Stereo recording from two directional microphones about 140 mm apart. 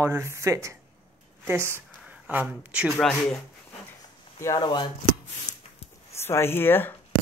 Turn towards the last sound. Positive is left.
turn(degrees=15)  # may be behind; listen again after turning